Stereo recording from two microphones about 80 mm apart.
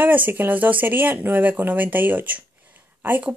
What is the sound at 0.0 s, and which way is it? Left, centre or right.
A woman's voice, right.